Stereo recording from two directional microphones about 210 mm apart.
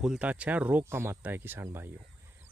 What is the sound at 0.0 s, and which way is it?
Speech, 5° right (ahead or behind).